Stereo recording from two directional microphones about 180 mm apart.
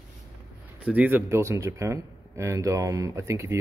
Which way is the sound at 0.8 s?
10° right (ahead or behind).